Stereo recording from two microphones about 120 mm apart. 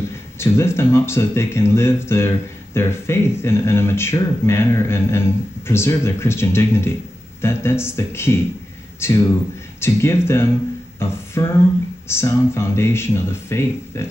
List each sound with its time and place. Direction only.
0.1 s speech: 20° left (ahead or behind)
11.0 s a sound: 20° left (ahead or behind)
12.1 s speech: 20° left (ahead or behind)